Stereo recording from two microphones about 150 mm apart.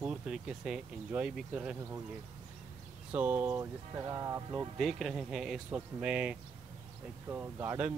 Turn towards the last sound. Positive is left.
turn(degrees=-10)  # may be behind; listen again after turning